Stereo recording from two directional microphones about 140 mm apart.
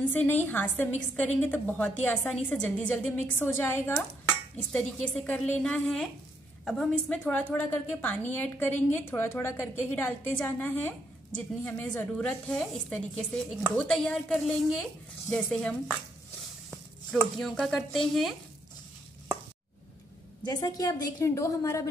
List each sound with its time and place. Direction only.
0.1 s a woman's voice: 15° left (ahead or behind)
5.2 s a woman's voice: 10° left (ahead or behind)
20.4 s a woman's voice: 25° left (ahead or behind)